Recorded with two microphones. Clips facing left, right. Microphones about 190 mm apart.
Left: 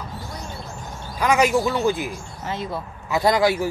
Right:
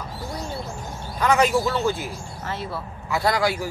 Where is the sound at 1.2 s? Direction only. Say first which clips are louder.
Left 1 dB; 15° left (ahead or behind).